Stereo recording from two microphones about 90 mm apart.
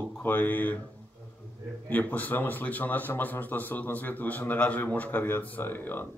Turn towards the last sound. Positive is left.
turn(degrees=25)  # may be behind; listen again after turning